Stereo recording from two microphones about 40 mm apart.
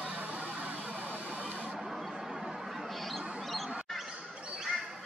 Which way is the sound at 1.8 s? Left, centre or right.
Centre.